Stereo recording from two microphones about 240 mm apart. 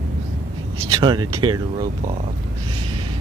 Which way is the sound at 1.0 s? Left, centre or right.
Centre.